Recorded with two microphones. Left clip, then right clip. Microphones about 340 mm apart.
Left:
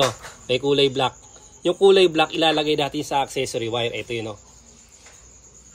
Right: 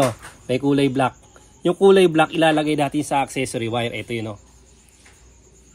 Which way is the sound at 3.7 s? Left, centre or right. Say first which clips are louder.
Even; right.